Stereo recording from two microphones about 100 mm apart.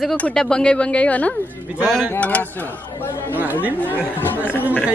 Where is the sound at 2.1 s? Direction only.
15° left (ahead or behind).